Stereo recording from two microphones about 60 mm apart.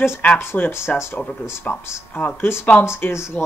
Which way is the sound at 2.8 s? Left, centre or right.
Left.